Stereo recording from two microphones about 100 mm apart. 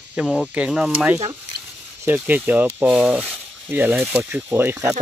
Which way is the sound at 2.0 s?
20° right (ahead or behind).